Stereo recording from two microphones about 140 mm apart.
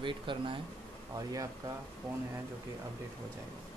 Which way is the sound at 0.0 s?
35° right (ahead or behind).